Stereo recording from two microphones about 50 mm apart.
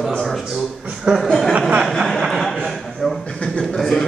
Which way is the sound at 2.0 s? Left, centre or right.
Centre.